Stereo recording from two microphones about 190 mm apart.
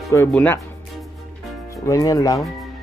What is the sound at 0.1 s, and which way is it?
Speech, 10° left (ahead or behind).